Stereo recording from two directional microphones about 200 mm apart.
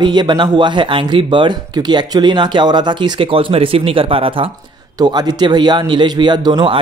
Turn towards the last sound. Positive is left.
turn(degrees=-20)  # may be behind; listen again after turning